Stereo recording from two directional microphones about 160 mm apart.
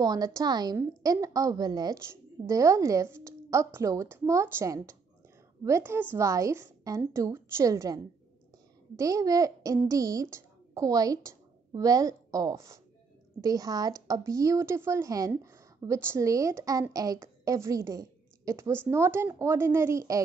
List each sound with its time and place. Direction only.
0.0 s a woman's voice: 25° right (ahead or behind)